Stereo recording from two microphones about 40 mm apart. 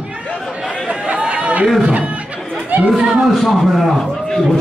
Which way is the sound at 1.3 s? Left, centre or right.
Right.